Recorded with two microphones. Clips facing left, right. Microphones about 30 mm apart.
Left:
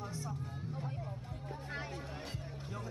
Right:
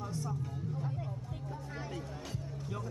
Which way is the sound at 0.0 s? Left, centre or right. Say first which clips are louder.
Right 4 dB; centre.